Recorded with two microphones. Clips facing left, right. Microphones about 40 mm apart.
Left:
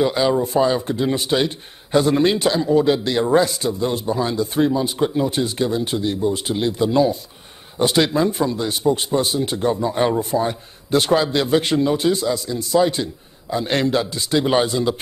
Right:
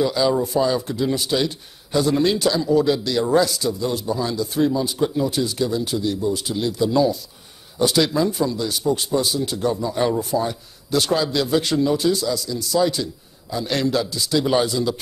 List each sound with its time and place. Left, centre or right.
0.0 s speech: left